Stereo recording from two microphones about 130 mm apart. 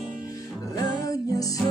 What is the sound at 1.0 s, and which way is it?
Music, 25° left (ahead or behind).